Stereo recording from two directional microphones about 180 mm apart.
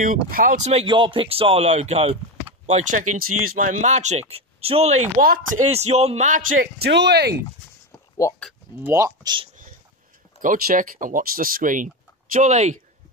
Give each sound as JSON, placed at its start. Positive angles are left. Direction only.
{"t": 0.0, "sound": "speech", "side_deg": -50}
{"t": 0.7, "sound": "speech", "side_deg": -30}
{"t": 6.8, "sound": "speech", "side_deg": -70}
{"t": 8.2, "sound": "speech", "side_deg": 15}
{"t": 8.8, "sound": "speech", "side_deg": -15}
{"t": 10.4, "sound": "speech", "side_deg": -45}